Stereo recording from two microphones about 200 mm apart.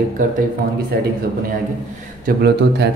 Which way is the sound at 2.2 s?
55° right (ahead or behind).